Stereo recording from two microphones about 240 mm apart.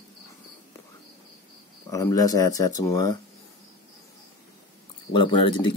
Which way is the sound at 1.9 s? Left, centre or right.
Centre.